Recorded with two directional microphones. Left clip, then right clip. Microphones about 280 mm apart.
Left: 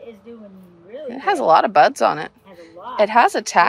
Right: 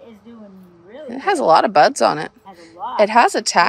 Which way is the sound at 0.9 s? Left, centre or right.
Centre.